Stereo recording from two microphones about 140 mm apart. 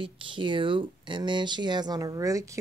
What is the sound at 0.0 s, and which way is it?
Speech, 35° right (ahead or behind).